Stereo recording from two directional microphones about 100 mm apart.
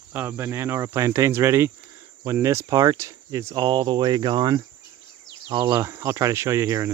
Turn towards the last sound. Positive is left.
turn(degrees=-30)  # may be behind; listen again after turning